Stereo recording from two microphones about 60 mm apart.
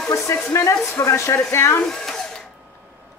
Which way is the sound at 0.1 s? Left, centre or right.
Left.